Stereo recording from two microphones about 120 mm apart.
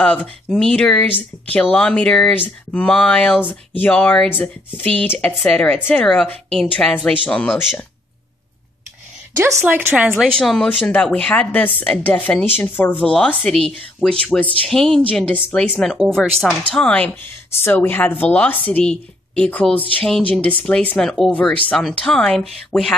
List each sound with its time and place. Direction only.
0.0 s speech: 10° left (ahead or behind)
9.4 s speech: 20° right (ahead or behind)
10.1 s speech: 5° left (ahead or behind)